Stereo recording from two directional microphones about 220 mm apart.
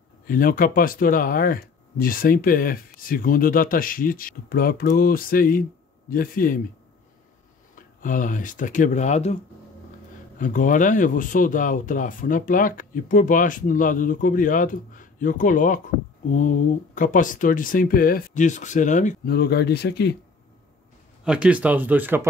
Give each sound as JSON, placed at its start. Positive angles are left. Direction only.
{"t": 0.3, "sound": "speech", "side_deg": 40}
{"t": 7.7, "sound": "speech", "side_deg": 35}
{"t": 10.4, "sound": "speech", "side_deg": 35}
{"t": 21.2, "sound": "speech", "side_deg": -5}